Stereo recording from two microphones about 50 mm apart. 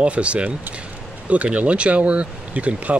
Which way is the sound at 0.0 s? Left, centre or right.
Right.